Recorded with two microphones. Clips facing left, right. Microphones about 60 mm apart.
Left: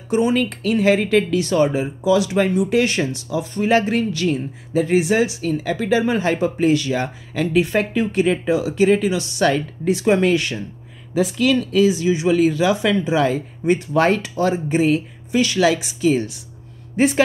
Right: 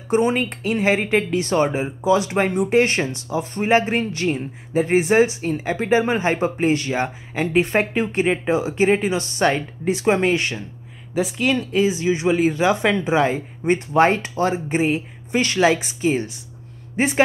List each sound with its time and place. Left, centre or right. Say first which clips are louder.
0.1 s speech: left 1 dB; right
15.3 s speech: left 1 dB; right